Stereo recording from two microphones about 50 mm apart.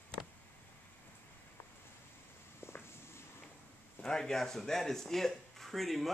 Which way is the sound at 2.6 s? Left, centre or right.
Left.